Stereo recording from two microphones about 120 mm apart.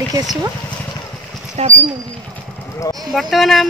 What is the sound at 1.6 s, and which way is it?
Speech, 60° right (ahead or behind).